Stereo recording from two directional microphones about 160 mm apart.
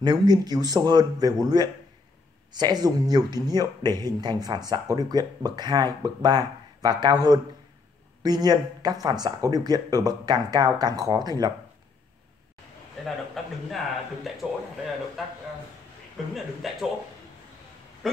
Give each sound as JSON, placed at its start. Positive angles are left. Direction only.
{"t": 0.0, "sound": "speech", "side_deg": -25}
{"t": 13.0, "sound": "a man's voice", "side_deg": 0}
{"t": 16.6, "sound": "a man's voice", "side_deg": 0}
{"t": 18.0, "sound": "a sound", "side_deg": 0}